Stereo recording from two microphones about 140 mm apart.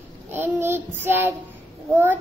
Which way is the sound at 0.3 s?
15° right (ahead or behind).